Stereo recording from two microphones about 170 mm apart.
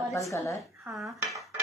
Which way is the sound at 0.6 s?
Centre (ahead or behind).